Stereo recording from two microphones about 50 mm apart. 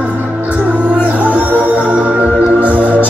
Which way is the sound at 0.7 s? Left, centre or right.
Right.